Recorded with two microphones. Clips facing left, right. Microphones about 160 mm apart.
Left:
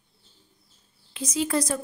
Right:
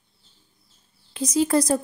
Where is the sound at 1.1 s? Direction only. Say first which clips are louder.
Right 6 dB; 35° right (ahead or behind).